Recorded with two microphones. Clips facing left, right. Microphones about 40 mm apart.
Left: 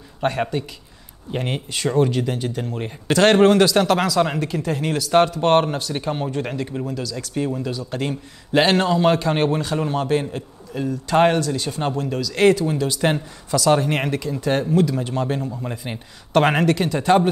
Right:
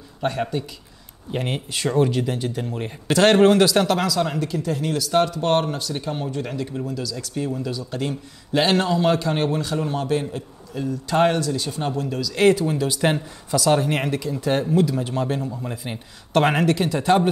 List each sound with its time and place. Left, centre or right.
0.2 s speech: left
1.3 s speech: centre
4.0 s speech: left
7.4 s a man's voice: left
7.7 s a man's voice: left
11.3 s speech: left
11.9 s a man's voice: centre
12.7 s speech: centre